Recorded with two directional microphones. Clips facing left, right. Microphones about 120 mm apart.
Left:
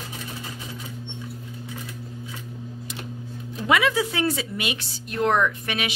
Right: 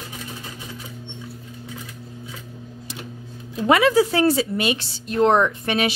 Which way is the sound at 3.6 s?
40° right (ahead or behind).